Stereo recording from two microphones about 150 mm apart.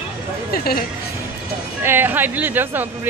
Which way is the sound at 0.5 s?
90° left.